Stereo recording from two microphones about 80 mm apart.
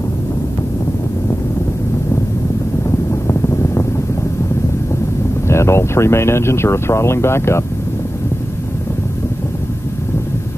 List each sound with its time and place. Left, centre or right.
3.1 s wind noise: left
5.5 s speech: left